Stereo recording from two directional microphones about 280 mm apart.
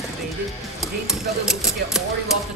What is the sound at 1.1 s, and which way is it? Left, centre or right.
Typewriter, centre.